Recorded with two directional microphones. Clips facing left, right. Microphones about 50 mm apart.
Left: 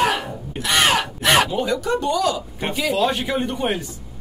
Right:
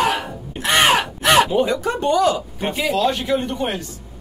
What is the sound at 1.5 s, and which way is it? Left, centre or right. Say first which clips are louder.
Speech: right 2 dB; right.